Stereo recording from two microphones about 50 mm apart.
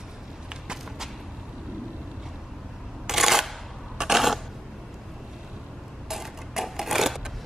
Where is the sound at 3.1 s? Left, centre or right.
Centre.